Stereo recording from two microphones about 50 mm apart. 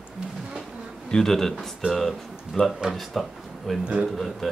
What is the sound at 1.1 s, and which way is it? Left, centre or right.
Speech, centre.